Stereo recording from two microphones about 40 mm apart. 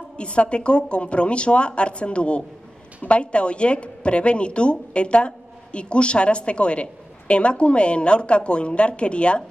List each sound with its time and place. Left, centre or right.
0.2 s a woman's voice: left